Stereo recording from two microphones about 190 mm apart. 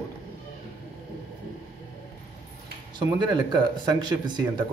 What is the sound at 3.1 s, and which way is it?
Speech, 20° right (ahead or behind).